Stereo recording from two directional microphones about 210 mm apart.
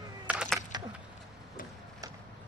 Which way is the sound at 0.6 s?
20° right (ahead or behind).